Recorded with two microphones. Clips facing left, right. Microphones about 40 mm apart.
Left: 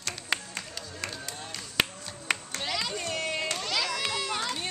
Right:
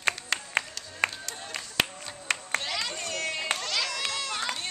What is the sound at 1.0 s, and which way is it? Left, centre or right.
Music, right.